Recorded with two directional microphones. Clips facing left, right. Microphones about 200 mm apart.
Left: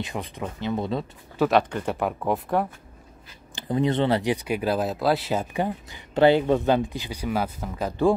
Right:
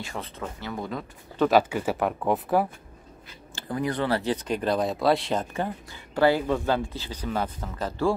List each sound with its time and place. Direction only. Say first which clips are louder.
0.0 s speech: left 3 dB; 15° left (ahead or behind)
1.4 s speech: even; 5° right (ahead or behind)
3.5 s speech: left 5 dB; 20° left (ahead or behind)